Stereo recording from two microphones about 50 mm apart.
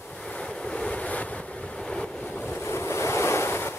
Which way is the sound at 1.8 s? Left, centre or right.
Centre.